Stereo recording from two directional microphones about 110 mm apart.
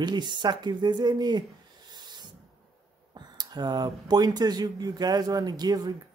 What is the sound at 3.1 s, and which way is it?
Speech, 40° right (ahead or behind).